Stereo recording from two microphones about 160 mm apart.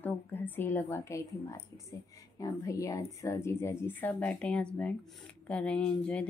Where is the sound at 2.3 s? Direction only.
20° left (ahead or behind).